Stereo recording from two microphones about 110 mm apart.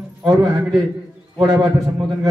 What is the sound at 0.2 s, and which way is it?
Speech, 30° right (ahead or behind).